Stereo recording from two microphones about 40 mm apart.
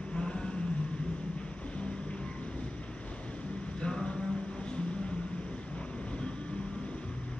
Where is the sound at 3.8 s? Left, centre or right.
Centre.